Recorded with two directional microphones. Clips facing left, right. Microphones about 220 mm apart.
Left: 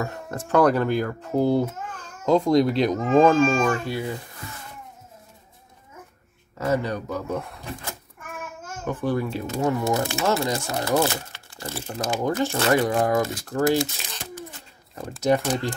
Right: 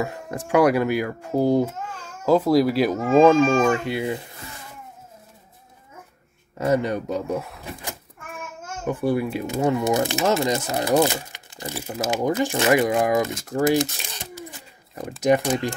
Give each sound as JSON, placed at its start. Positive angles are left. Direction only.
{"t": 0.0, "sound": "speech", "side_deg": -10}
{"t": 6.6, "sound": "speech", "side_deg": -20}
{"t": 7.3, "sound": "speech", "side_deg": -5}
{"t": 8.8, "sound": "speech", "side_deg": -10}